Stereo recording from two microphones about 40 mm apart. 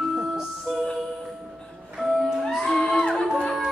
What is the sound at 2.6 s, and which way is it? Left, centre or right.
Music, left.